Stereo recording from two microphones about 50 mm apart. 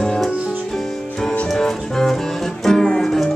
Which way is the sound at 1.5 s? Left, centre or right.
Centre.